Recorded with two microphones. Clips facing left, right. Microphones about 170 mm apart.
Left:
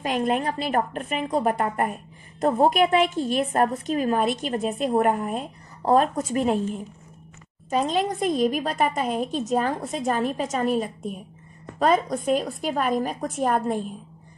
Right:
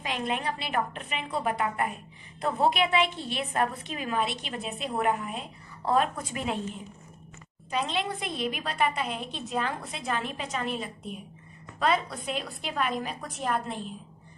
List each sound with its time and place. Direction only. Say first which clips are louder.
0.0 s a woman's voice: left 7 dB; 45° left (ahead or behind)